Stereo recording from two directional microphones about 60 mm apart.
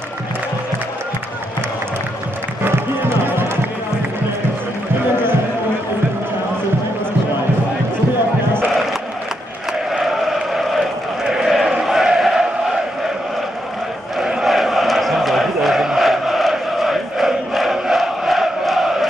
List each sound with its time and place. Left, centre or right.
2.6 s music: right
10.0 s chant: centre
11.2 s a sound: centre
11.8 s chant: centre
14.2 s chant: centre